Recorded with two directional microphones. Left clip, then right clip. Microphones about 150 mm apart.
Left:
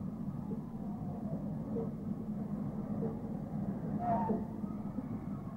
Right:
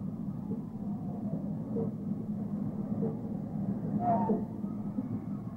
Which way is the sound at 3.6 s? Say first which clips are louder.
Right 5 dB; 30° left (ahead or behind).